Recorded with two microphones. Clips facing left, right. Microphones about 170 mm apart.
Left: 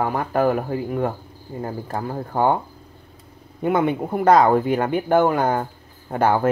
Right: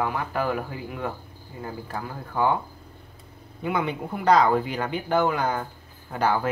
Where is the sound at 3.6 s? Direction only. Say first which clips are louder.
Left 7 dB; 50° left (ahead or behind).